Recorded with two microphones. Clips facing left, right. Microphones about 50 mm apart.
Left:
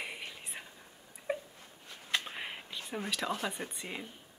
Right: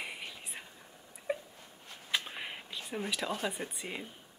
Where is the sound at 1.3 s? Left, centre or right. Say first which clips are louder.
Even; centre.